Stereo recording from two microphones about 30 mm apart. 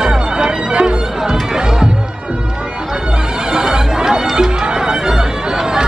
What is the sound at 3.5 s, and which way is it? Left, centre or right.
Music, right.